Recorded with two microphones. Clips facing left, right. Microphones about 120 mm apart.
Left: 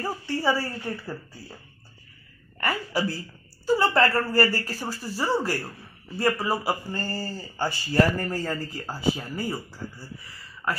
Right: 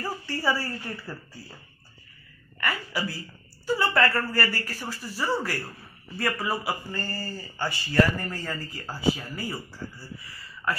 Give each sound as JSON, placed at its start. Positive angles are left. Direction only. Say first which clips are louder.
{"t": 0.0, "sound": "a woman's voice", "louder": "left 3 dB", "side_deg": 20}
{"t": 2.6, "sound": "speech", "louder": "left 3 dB", "side_deg": 35}
{"t": 8.5, "sound": "speech", "louder": "left 4 dB", "side_deg": 20}
{"t": 10.6, "sound": "speech", "louder": "even", "side_deg": 20}